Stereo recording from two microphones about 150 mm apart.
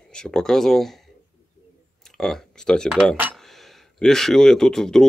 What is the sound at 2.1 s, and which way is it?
Speech, 5° left (ahead or behind).